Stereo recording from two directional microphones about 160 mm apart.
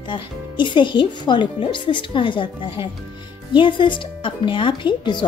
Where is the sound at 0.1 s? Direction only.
30° left (ahead or behind).